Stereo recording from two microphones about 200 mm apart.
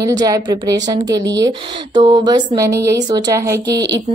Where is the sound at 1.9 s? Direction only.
20° right (ahead or behind).